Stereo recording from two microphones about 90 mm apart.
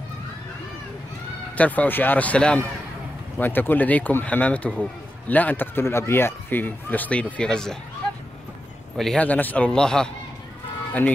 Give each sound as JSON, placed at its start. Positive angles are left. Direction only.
{"t": 1.6, "sound": "speech", "side_deg": 20}
{"t": 8.9, "sound": "a man's voice", "side_deg": 5}
{"t": 9.2, "sound": "speech", "side_deg": 20}